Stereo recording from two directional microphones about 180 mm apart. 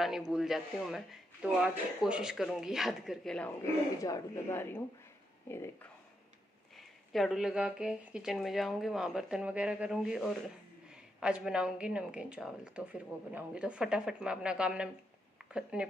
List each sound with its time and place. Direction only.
0.0 s speech: 5° right (ahead or behind)
7.1 s speech: centre (ahead or behind)